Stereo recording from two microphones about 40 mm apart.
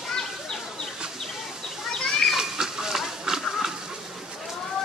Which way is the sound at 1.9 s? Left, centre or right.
Centre.